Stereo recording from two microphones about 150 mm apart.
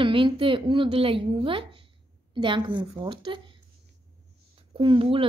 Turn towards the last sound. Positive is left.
turn(degrees=-35)  # may be behind; listen again after turning